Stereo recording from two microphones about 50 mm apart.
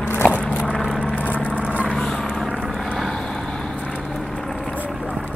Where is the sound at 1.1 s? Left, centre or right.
Left.